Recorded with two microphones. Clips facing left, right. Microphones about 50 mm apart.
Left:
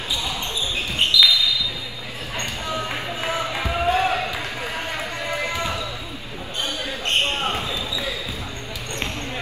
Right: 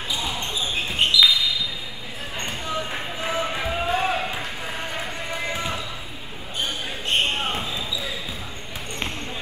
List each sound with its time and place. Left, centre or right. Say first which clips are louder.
0.1 s basketball bounce: left 1 dB; right
2.9 s basketball bounce: left 2 dB; left